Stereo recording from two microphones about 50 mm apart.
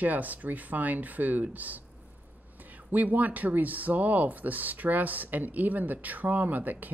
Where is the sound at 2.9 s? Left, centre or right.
Right.